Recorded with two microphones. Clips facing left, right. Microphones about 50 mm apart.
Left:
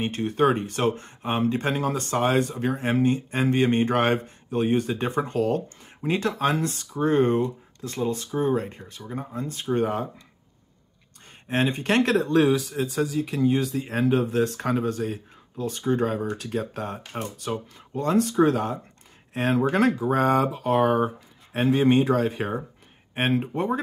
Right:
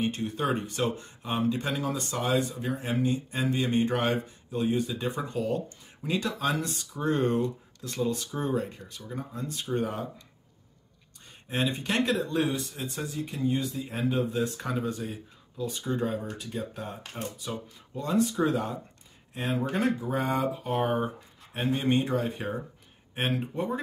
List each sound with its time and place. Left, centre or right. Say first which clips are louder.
0.0 s speech: left 7 dB; left
11.4 s speech: left 6 dB; left
12.2 s speech: left 8 dB; left
21.5 s speech: left 7 dB; left
23.1 s speech: left 6 dB; left